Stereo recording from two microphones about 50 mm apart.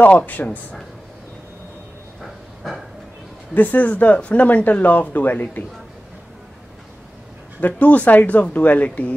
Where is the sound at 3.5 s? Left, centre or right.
Left.